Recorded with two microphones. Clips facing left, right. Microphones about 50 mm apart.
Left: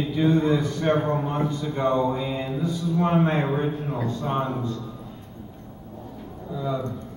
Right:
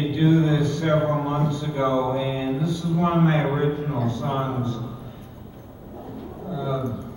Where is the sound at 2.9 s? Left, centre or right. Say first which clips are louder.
Right 1 dB; centre.